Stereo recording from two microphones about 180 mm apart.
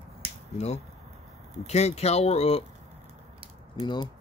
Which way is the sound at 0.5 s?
35° left (ahead or behind).